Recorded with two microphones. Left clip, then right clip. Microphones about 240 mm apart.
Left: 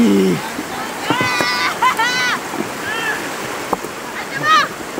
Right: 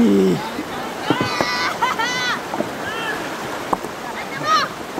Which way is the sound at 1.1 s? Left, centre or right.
Left.